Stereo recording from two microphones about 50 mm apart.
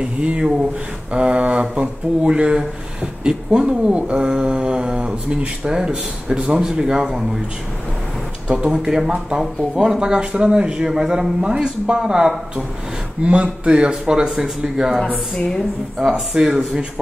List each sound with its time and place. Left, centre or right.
0.0 s speech: right
6.6 s speech: centre
8.5 s speech: centre
15.3 s a woman's voice: centre
16.0 s speech: centre